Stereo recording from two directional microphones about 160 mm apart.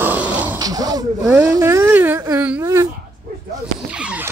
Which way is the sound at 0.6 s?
25° right (ahead or behind).